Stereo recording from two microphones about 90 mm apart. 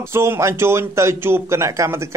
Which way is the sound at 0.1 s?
30° right (ahead or behind).